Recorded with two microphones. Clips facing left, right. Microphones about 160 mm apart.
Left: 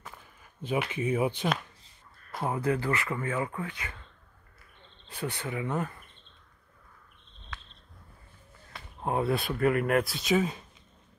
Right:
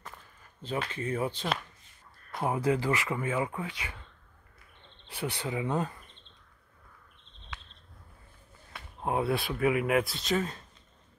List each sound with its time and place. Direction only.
0.6 s speech: 15° left (ahead or behind)
2.4 s speech: 20° right (ahead or behind)
5.0 s speech: 10° right (ahead or behind)
8.7 s speech: centre (ahead or behind)